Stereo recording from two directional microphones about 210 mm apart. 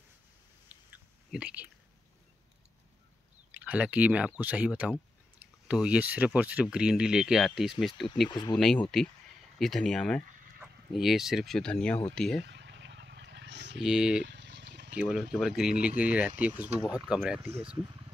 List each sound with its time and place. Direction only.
1.3 s speech: 5° right (ahead or behind)
3.5 s speech: 5° right (ahead or behind)
8.3 s speech: 20° left (ahead or behind)
8.5 s speech: 5° left (ahead or behind)
12.4 s a sound: 55° right (ahead or behind)
13.8 s speech: 5° right (ahead or behind)
14.2 s boiling: 55° right (ahead or behind)
15.0 s speech: 5° right (ahead or behind)